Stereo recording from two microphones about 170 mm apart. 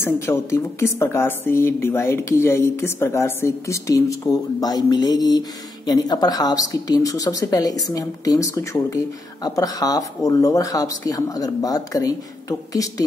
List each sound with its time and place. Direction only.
0.0 s a woman's voice: 15° left (ahead or behind)